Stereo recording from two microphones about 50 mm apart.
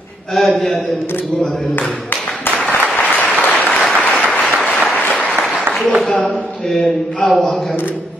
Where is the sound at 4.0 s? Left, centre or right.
Left.